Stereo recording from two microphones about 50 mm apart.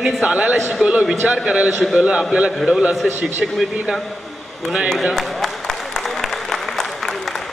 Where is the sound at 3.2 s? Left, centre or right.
Right.